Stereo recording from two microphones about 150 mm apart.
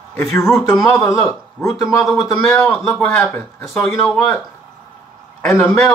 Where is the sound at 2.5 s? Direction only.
20° left (ahead or behind).